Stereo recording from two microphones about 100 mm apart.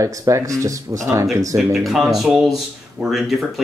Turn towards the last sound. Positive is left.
turn(degrees=0)  # may be behind; listen again after turning